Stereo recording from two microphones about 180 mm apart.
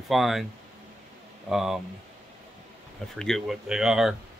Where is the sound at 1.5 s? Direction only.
Centre (ahead or behind).